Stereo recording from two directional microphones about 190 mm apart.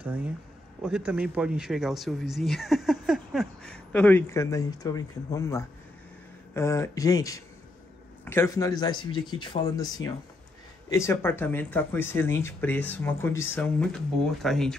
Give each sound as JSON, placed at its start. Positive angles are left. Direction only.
{"t": 0.8, "sound": "speech", "side_deg": -5}